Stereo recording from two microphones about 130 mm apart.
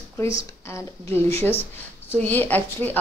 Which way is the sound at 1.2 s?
20° left (ahead or behind).